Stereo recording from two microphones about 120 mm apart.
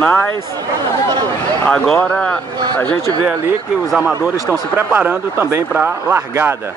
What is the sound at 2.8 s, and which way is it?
Speech, 35° right (ahead or behind).